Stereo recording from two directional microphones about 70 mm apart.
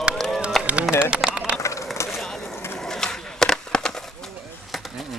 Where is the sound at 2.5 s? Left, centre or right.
Left.